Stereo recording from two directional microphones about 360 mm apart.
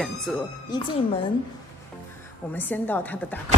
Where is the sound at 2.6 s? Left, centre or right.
Centre.